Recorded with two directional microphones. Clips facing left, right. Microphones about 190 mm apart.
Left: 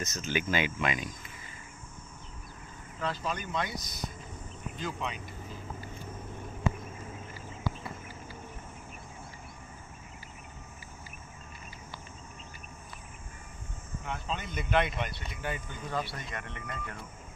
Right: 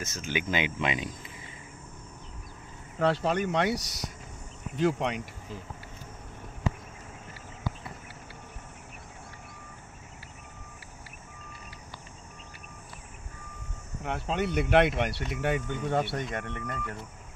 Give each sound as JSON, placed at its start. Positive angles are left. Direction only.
{"t": 0.0, "sound": "speech", "side_deg": -10}
{"t": 3.0, "sound": "speech", "side_deg": -75}
{"t": 14.0, "sound": "speech", "side_deg": -65}